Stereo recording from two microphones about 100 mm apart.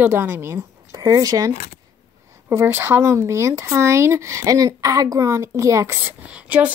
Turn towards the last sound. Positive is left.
turn(degrees=-15)  # may be behind; listen again after turning